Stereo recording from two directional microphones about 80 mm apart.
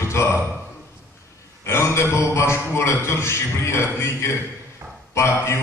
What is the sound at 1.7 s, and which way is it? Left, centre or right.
A man's voice, left.